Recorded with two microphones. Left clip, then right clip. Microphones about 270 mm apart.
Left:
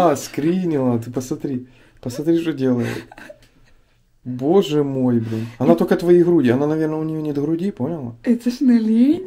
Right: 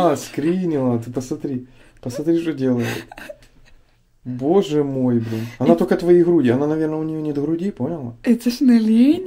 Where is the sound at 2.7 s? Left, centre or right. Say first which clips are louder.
Even; centre.